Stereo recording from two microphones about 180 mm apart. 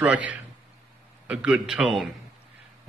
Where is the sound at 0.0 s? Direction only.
10° right (ahead or behind).